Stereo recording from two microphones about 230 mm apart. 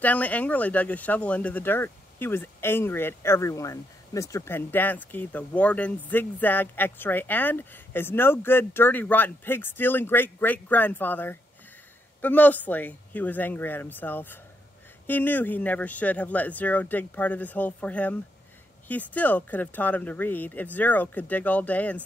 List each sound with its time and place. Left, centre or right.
0.0 s speech: centre